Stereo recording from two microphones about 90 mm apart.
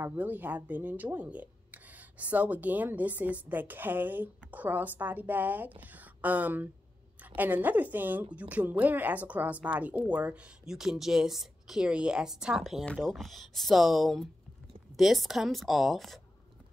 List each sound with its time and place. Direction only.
0.0 s a woman's voice: 20° right (ahead or behind)
12.8 s speech: 5° left (ahead or behind)